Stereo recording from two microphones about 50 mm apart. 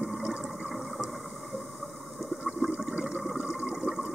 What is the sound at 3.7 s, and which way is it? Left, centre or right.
Toilet flush, centre.